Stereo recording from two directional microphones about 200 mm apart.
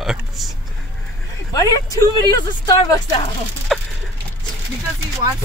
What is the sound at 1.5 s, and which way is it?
A woman's voice, 20° left (ahead or behind).